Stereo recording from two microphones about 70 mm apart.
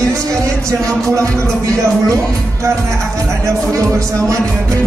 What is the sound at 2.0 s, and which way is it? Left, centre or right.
Speech, right.